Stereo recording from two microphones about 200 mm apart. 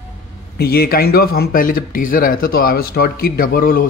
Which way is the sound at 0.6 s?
50° left (ahead or behind).